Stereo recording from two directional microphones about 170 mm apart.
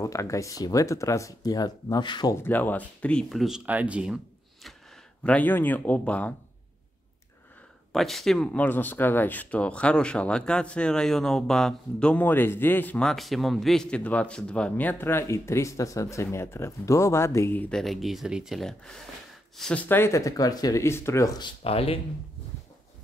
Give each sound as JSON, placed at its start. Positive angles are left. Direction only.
{"t": 0.0, "sound": "speech", "side_deg": 20}
{"t": 2.4, "sound": "speech", "side_deg": 10}
{"t": 5.2, "sound": "speech", "side_deg": 10}
{"t": 7.9, "sound": "speech", "side_deg": 0}